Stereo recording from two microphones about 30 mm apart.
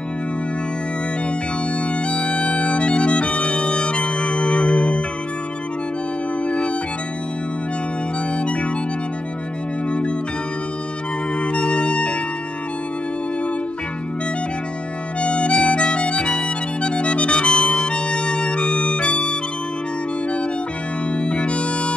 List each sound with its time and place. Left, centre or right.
1.8 s bagpipes: left
3.5 s music: left
6.4 s music: left
8.4 s harmonica: left
9.8 s organ: left
11.4 s organ: left
15.1 s harmonica: left
16.1 s music: left
21.1 s music: left